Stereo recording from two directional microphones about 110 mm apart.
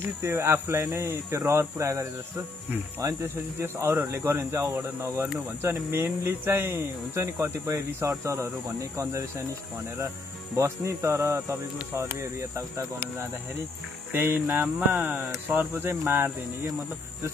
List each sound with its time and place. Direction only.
0.2 s speech: 25° right (ahead or behind)
10.5 s speech: 25° right (ahead or behind)